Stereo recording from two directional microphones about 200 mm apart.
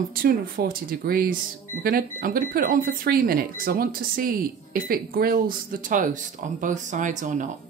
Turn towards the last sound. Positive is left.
turn(degrees=-40)  # may be behind; listen again after turning